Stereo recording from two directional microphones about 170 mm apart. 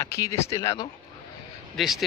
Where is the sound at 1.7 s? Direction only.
Centre (ahead or behind).